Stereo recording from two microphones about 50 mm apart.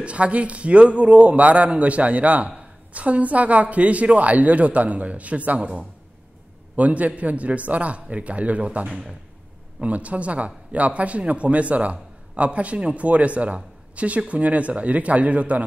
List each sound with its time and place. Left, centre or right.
0.0 s a man's voice: right
6.8 s a man's voice: right